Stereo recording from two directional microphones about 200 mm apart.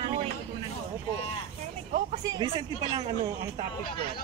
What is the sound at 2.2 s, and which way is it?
Speech, 20° right (ahead or behind).